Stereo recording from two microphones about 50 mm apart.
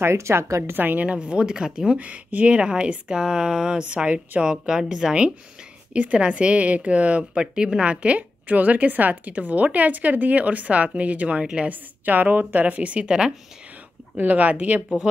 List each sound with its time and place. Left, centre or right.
0.0 s a woman's voice: right
0.7 s a woman's voice: right
1.0 s speech: right
2.0 s a woman's voice: right
3.9 s a woman's voice: right
4.5 s a woman's voice: centre
11.7 s a woman's voice: right; by 13.3 s centre
14.1 s a woman's voice: right